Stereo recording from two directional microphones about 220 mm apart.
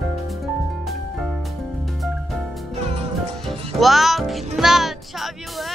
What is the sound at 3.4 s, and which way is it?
Music, centre (ahead or behind).